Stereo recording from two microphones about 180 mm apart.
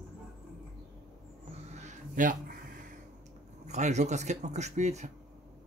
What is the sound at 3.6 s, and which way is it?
Speech, 40° right (ahead or behind).